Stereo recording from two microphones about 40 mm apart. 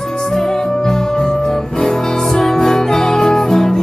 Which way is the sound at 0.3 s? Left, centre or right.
Centre.